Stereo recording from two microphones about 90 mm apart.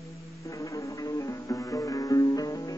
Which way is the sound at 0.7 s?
35° left (ahead or behind).